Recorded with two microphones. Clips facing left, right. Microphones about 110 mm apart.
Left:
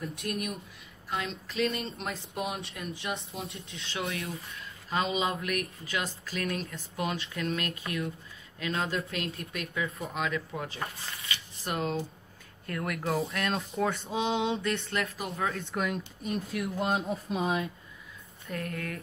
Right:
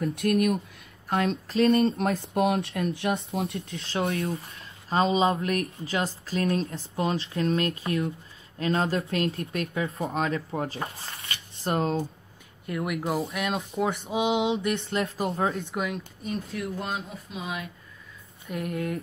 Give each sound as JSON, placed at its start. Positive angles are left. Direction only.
{"t": 0.0, "sound": "speech", "side_deg": -65}
{"t": 1.0, "sound": "a woman's voice", "side_deg": -50}
{"t": 1.5, "sound": "speech", "side_deg": -35}
{"t": 1.9, "sound": "speech", "side_deg": -55}
{"t": 3.7, "sound": "speech", "side_deg": -35}
{"t": 12.6, "sound": "speech", "side_deg": -15}
{"t": 15.7, "sound": "speech", "side_deg": -5}
{"t": 16.7, "sound": "speech", "side_deg": 25}
{"t": 18.6, "sound": "speech", "side_deg": -25}